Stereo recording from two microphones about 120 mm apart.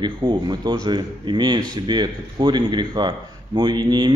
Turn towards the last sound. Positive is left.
turn(degrees=-40)  # may be behind; listen again after turning